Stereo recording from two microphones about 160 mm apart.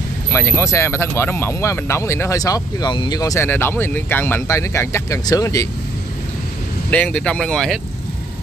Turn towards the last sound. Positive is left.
turn(degrees=5)  # may be behind; listen again after turning